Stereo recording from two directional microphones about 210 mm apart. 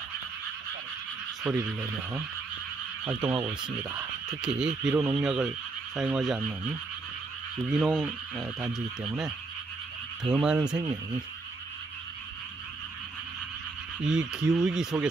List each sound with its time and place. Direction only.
1.4 s speech: 10° right (ahead or behind)
7.6 s speech: 5° right (ahead or behind)
10.8 s speech: 20° right (ahead or behind)
14.0 s speech: 5° right (ahead or behind)